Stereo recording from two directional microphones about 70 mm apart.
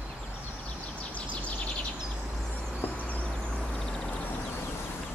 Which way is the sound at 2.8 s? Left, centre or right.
Left.